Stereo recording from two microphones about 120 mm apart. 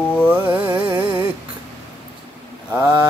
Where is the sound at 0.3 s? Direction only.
15° right (ahead or behind).